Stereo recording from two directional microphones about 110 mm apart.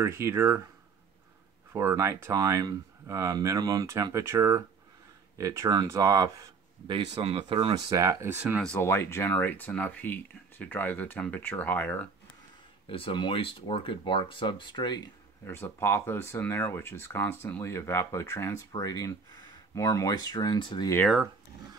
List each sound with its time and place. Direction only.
0.0 s speech: 25° right (ahead or behind)
1.7 s speech: 25° right (ahead or behind)
6.9 s speech: 60° right (ahead or behind)
7.7 s speech: 30° right (ahead or behind)
8.7 s speech: 20° left (ahead or behind)
12.8 s speech: 55° left (ahead or behind)
15.4 s speech: 20° left (ahead or behind); by 20.9 s 45° left (ahead or behind)